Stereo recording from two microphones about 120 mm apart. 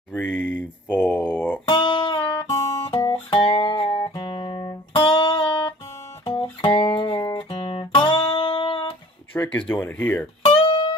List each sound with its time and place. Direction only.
0.1 s speech: 15° left (ahead or behind)
1.7 s guitar: 40° left (ahead or behind)
2.9 s music: 45° left (ahead or behind)
4.1 s music: 40° left (ahead or behind)
6.2 s music: 50° left (ahead or behind)
9.3 s speech: 15° left (ahead or behind)
10.5 s music: 45° left (ahead or behind)